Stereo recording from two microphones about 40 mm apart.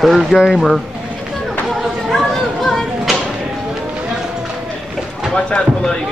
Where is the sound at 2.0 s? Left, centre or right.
Centre.